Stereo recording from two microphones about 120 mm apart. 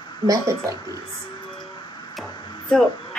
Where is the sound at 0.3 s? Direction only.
25° right (ahead or behind).